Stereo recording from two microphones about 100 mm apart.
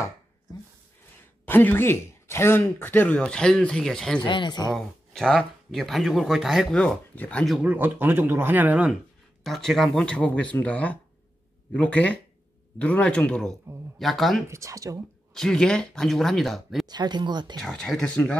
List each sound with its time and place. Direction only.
1.4 s speech: 20° left (ahead or behind)
3.2 s speech: 10° left (ahead or behind)
4.2 s speech: 50° left (ahead or behind)
4.7 s speech: 5° left (ahead or behind)
6.7 s speech: 10° left (ahead or behind)
7.6 s speech: 20° right (ahead or behind)
9.4 s speech: centre (ahead or behind)
14.5 s speech: 30° right (ahead or behind)
15.3 s speech: 5° left (ahead or behind)
16.8 s speech: 45° right (ahead or behind)
17.6 s speech: 5° left (ahead or behind)